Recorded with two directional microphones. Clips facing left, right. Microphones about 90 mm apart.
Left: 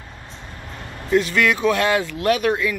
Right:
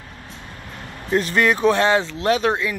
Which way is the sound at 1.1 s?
40° right (ahead or behind).